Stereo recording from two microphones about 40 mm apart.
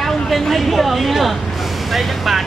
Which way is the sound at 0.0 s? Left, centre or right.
Centre.